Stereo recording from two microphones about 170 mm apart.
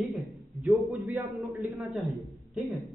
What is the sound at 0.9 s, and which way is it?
Speech, 15° right (ahead or behind).